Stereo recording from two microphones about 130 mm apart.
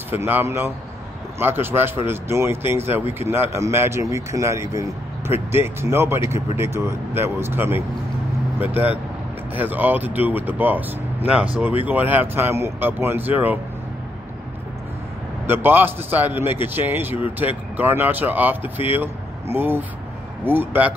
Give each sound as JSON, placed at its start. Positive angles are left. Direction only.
{"t": 0.2, "sound": "a man's voice", "side_deg": -20}
{"t": 15.4, "sound": "speech", "side_deg": -15}